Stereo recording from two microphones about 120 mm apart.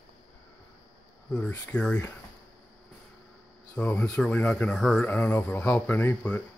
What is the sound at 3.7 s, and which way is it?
Speech, 10° left (ahead or behind).